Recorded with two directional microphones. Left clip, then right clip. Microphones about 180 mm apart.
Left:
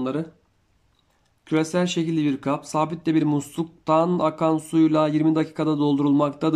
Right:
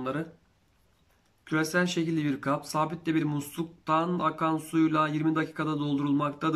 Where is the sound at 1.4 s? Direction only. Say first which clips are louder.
Left 5 dB; 20° left (ahead or behind).